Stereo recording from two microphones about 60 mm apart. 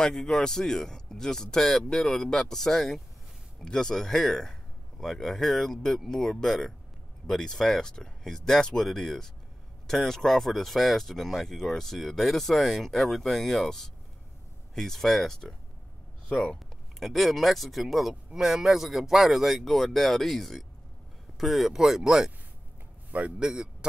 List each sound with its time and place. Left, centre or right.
0.0 s speech: centre
17.0 s speech: centre
23.1 s a man's voice: right
23.5 s a man's voice: centre